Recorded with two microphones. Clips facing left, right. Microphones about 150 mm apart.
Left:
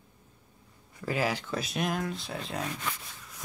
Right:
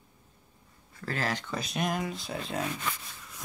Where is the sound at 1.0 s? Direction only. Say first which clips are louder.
Left 3 dB; 10° left (ahead or behind).